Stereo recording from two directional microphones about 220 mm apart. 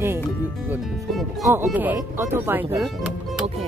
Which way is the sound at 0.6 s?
Centre (ahead or behind).